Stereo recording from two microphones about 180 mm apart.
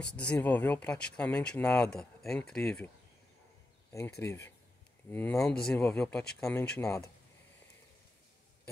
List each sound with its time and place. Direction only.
0.0 s speech: 5° left (ahead or behind)
4.2 s speech: 15° left (ahead or behind)